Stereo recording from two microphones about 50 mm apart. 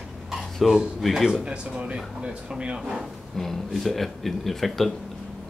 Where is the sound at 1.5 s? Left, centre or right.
Right.